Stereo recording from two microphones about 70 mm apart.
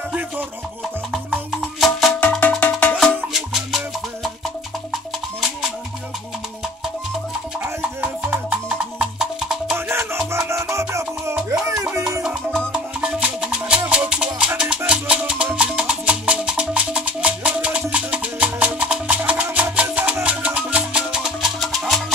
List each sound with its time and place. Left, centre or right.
1.8 s music: centre
2.6 s cowbell: centre
3.3 s music: centre
8.9 s music: centre
9.8 s music: right
12.7 s music: centre
21.1 s music: centre